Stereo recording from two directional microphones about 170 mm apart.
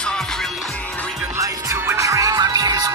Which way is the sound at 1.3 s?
20° right (ahead or behind).